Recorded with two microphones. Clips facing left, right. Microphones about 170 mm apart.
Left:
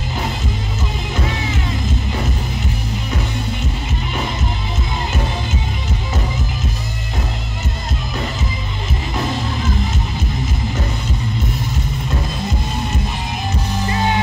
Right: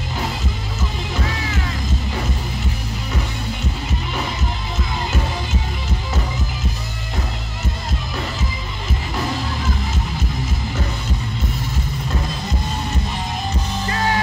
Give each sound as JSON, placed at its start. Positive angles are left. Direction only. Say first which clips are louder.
{"t": 13.8, "sound": "music", "louder": "left 2 dB", "side_deg": 20}